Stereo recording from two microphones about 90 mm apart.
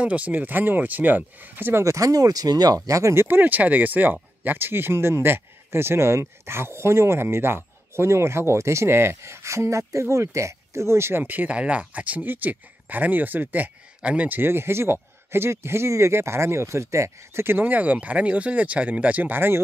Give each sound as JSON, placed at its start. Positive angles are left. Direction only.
{"t": 0.0, "sound": "speech", "side_deg": -15}